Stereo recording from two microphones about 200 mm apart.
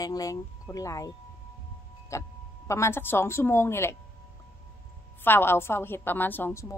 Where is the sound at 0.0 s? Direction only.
15° left (ahead or behind).